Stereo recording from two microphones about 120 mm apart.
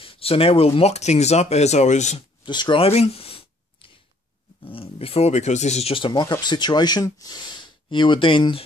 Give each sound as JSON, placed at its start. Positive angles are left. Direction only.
{"t": 0.0, "sound": "speech", "side_deg": 50}
{"t": 2.4, "sound": "speech", "side_deg": 40}
{"t": 2.8, "sound": "a sound", "side_deg": 60}
{"t": 4.6, "sound": "speech", "side_deg": 50}
{"t": 6.0, "sound": "speech", "side_deg": 35}